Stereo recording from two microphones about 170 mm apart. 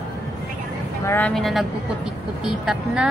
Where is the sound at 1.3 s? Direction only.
Centre (ahead or behind).